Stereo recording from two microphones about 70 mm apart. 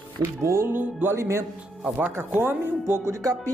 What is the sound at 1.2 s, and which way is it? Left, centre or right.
Speech, right.